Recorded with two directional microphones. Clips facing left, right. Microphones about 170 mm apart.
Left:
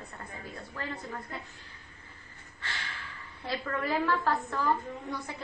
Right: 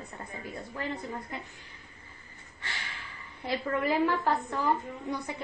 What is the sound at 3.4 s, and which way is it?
A woman's voice, 15° right (ahead or behind).